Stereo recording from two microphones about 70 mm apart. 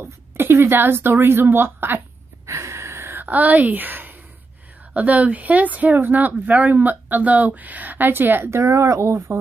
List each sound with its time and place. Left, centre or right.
0.0 s a woman's voice: right
2.4 s a sound: right
4.9 s speech: right